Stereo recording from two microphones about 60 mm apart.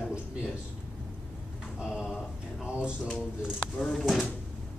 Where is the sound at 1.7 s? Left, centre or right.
Centre.